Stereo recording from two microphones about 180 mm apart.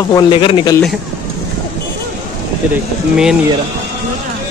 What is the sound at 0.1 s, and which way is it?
Speech, 25° left (ahead or behind).